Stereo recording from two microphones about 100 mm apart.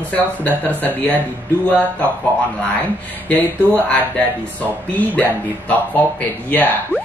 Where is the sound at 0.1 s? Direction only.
15° left (ahead or behind).